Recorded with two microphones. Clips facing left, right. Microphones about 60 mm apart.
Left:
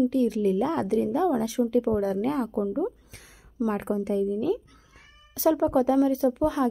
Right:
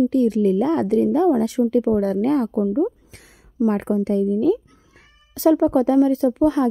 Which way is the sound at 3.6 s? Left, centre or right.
Right.